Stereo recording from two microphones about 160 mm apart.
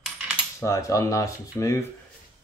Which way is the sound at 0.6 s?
20° left (ahead or behind).